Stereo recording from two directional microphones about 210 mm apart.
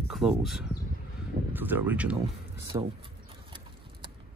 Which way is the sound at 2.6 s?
25° right (ahead or behind).